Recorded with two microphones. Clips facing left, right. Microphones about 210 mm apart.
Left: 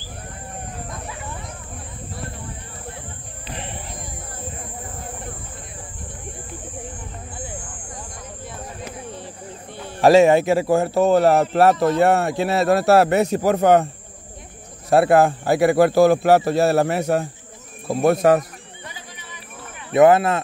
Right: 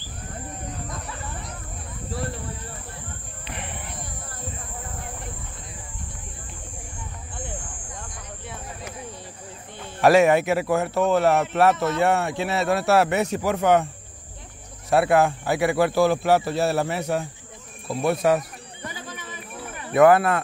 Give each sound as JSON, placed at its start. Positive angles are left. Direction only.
{"t": 3.4, "sound": "music", "side_deg": 30}
{"t": 10.0, "sound": "a man's voice", "side_deg": 25}
{"t": 14.9, "sound": "a man's voice", "side_deg": 35}
{"t": 19.9, "sound": "speech", "side_deg": 20}